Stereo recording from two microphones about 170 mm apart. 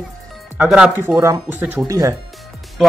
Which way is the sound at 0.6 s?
5° right (ahead or behind).